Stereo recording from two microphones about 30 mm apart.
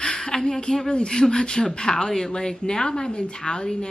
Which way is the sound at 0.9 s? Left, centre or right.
Left.